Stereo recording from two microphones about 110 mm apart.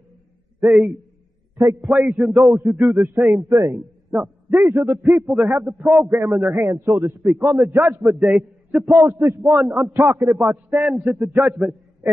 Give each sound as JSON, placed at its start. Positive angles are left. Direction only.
{"t": 0.6, "sound": "a man's voice", "side_deg": -5}
{"t": 1.6, "sound": "a man's voice", "side_deg": -25}
{"t": 1.9, "sound": "speech", "side_deg": -5}
{"t": 2.3, "sound": "a man's voice", "side_deg": -25}
{"t": 8.2, "sound": "a man's voice", "side_deg": -5}
{"t": 8.9, "sound": "a man's voice", "side_deg": -20}